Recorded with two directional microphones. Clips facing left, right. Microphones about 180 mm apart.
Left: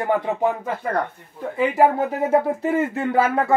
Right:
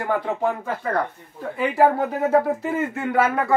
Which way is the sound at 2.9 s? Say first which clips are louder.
Left 1 dB; 30° left (ahead or behind).